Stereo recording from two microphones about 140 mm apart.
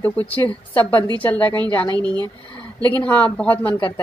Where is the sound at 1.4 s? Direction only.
30° right (ahead or behind).